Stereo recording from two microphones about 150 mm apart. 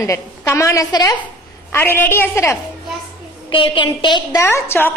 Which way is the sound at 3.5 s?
35° left (ahead or behind).